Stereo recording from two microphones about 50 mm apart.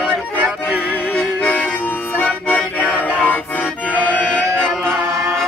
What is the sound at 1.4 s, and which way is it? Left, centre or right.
Music, left.